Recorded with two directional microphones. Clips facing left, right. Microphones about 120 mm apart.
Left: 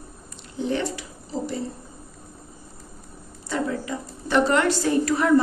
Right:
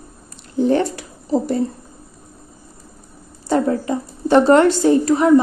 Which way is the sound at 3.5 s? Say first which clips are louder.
Right 9 dB; 35° right (ahead or behind).